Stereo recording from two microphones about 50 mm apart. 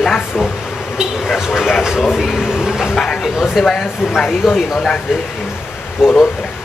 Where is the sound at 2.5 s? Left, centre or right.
Centre.